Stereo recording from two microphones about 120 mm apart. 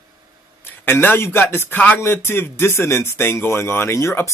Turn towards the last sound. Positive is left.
turn(degrees=20)  # may be behind; listen again after turning